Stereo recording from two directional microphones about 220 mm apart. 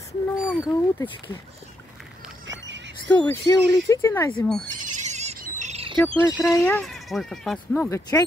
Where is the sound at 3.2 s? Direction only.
10° left (ahead or behind).